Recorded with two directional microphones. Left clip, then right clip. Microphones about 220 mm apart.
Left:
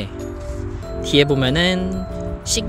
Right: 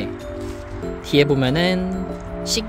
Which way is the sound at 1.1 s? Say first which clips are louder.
Left 1 dB; 5° left (ahead or behind).